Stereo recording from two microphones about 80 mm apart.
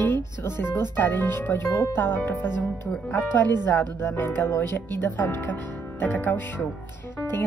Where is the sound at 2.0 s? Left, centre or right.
Left.